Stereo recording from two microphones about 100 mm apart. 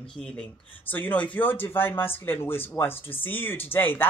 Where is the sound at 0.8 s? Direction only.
20° left (ahead or behind).